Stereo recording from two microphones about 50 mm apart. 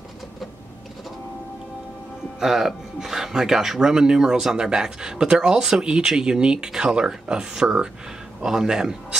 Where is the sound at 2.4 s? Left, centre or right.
Centre.